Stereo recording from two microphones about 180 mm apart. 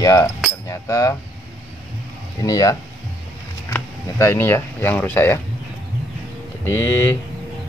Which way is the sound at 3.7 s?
15° left (ahead or behind).